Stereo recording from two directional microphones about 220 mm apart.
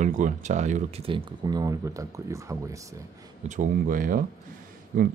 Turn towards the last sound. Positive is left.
turn(degrees=-35)  # may be behind; listen again after turning